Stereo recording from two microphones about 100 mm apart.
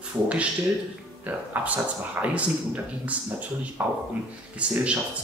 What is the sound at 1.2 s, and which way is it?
A man's voice, 15° right (ahead or behind).